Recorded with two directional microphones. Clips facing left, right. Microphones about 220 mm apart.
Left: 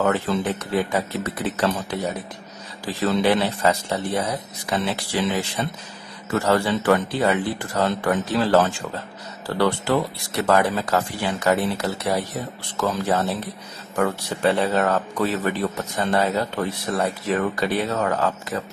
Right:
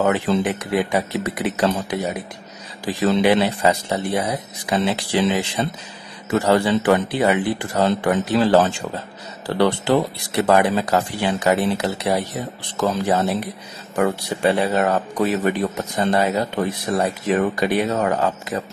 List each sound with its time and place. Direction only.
0.0 s speech: 20° right (ahead or behind)